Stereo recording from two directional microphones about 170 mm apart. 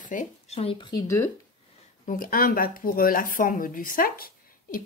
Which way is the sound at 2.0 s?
55° left (ahead or behind).